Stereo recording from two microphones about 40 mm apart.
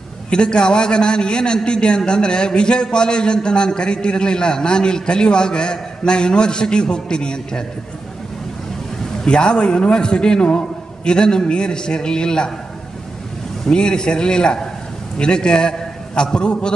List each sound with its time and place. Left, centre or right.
0.3 s a man's voice: left
9.2 s a man's voice: left
13.7 s a man's voice: left